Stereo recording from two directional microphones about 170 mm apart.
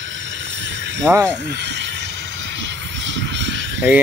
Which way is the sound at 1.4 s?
90° right.